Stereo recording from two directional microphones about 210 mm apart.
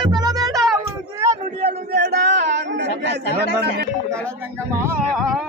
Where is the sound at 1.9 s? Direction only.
50° right (ahead or behind).